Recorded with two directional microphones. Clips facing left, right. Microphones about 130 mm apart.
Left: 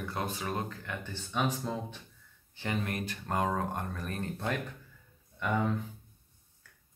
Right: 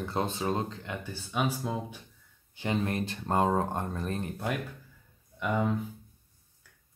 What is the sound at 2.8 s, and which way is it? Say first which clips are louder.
Speech: right 5 dB; 30° right (ahead or behind).